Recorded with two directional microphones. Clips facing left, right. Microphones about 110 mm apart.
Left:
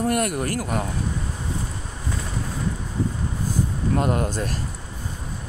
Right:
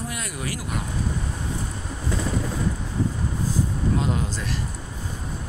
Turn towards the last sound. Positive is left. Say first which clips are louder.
# left 4 dB
turn(degrees=55)  # may be behind; listen again after turning